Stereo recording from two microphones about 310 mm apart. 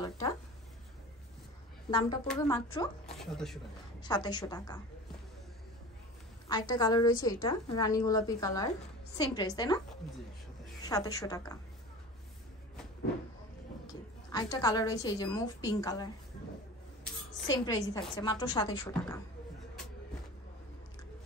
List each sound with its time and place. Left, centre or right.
1.9 s a woman's voice: centre
3.2 s speech: centre
4.0 s a woman's voice: centre
6.5 s a woman's voice: centre
10.9 s a woman's voice: centre
13.8 s a woman's voice: centre
17.6 s a woman's voice: centre